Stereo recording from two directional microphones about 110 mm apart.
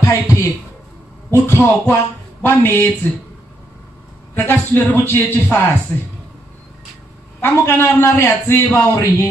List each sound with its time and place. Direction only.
0.0 s a man's voice: 25° left (ahead or behind)
1.5 s a man's voice: 20° left (ahead or behind)
4.4 s a man's voice: 20° left (ahead or behind)
7.4 s a man's voice: 20° left (ahead or behind)